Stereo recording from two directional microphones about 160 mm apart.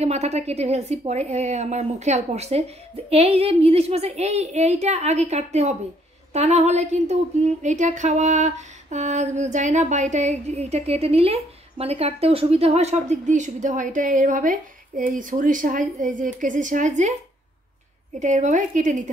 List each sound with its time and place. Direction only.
0.0 s speech: 40° right (ahead or behind)
18.2 s speech: 50° right (ahead or behind)